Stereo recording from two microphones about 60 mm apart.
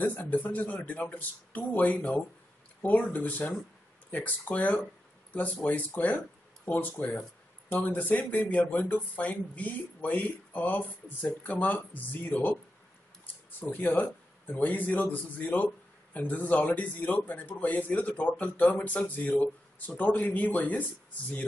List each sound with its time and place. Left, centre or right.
0.0 s speech: left
13.6 s speech: left